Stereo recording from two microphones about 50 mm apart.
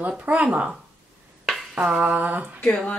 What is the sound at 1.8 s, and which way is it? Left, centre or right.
Speech, right.